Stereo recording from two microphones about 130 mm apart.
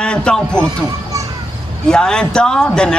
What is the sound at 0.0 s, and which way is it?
Speech, 5° left (ahead or behind).